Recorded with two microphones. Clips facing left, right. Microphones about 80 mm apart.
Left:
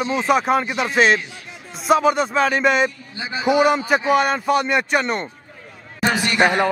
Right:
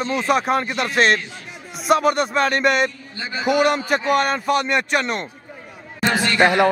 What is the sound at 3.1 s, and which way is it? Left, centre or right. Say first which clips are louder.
Speech: left 1 dB; centre.